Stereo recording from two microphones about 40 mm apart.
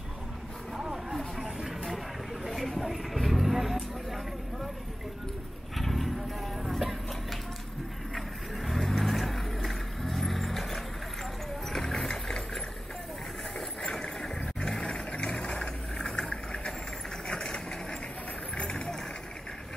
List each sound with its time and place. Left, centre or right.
1.4 s vehicle: centre
2.5 s vehicle: centre
5.8 s insect: centre
8.1 s vehicle: centre
12.1 s engine: centre
13.6 s vehicle: centre
18.6 s music: left